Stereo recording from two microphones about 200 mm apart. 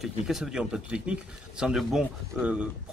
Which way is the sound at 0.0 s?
Centre (ahead or behind).